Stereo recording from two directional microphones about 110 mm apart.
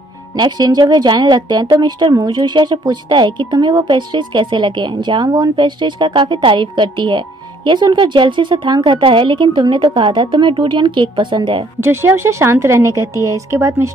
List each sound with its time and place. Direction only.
0.4 s speech: 40° right (ahead or behind)
11.8 s a woman's voice: 20° right (ahead or behind)